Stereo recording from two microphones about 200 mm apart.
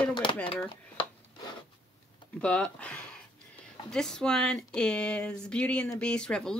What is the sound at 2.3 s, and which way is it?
Speech, 5° left (ahead or behind).